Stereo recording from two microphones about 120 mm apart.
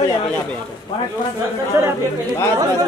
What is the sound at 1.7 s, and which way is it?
Speech, 25° right (ahead or behind).